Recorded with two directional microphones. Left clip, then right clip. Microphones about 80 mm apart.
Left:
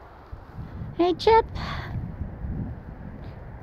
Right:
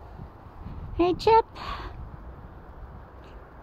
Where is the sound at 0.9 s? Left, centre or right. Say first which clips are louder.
Left 1 dB; centre.